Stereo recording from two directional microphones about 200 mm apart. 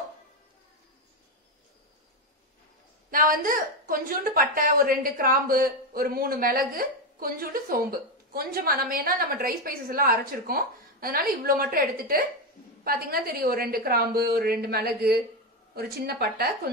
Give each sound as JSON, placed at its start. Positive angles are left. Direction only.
{"t": 3.1, "sound": "a woman's voice", "side_deg": -45}